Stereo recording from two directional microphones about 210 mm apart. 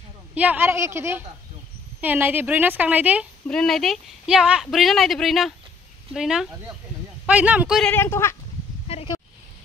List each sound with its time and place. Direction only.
0.3 s a woman's voice: 5° right (ahead or behind)
7.9 s speech: 10° left (ahead or behind)
8.8 s a sound: 30° left (ahead or behind)